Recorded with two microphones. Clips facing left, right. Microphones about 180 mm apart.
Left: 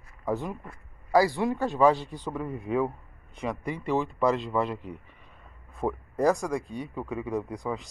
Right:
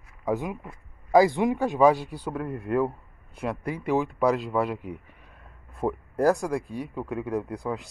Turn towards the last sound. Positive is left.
turn(degrees=0)  # may be behind; listen again after turning